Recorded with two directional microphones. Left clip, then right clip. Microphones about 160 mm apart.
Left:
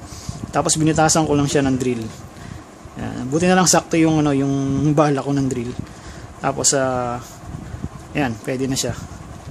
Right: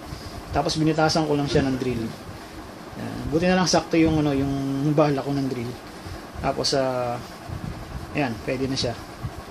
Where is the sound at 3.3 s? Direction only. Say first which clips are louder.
Left 5 dB; 70° left (ahead or behind).